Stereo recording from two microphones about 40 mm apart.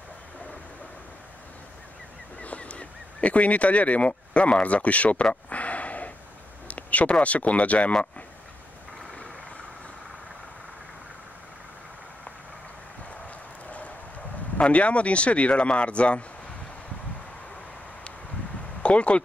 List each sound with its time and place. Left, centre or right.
2.4 s speech: left
5.2 s a sound: left
6.7 s speech: left
13.7 s clip-clop: left
14.6 s speech: left
18.8 s speech: left